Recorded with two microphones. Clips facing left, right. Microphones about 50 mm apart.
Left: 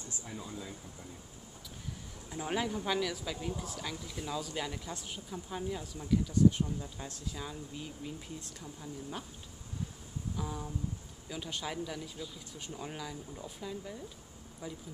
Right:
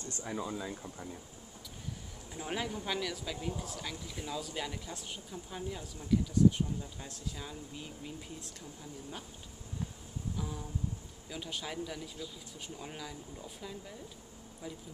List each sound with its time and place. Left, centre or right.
0.1 s speech: right
2.3 s speech: centre
10.3 s a sound: centre
11.2 s speech: centre